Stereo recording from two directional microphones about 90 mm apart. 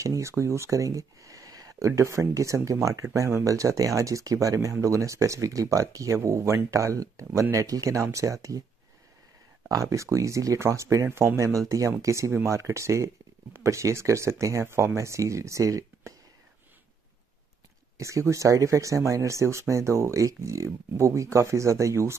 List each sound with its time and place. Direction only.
0.0 s speech: 35° right (ahead or behind)
9.7 s speech: 35° right (ahead or behind)
17.9 s speech: 35° right (ahead or behind)